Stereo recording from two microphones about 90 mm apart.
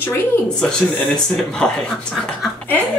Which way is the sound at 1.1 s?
5° left (ahead or behind).